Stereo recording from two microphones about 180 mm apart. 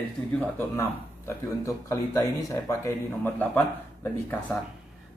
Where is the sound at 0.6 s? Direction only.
15° left (ahead or behind).